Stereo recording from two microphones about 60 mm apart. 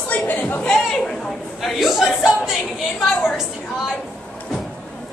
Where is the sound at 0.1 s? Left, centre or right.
Left.